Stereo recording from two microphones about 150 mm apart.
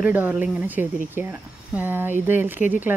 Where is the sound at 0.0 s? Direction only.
10° right (ahead or behind).